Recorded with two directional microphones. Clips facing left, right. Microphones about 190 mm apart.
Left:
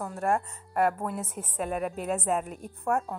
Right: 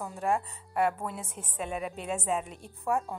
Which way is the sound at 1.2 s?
10° left (ahead or behind).